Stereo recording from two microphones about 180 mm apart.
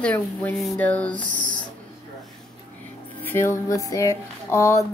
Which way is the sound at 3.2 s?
15° left (ahead or behind).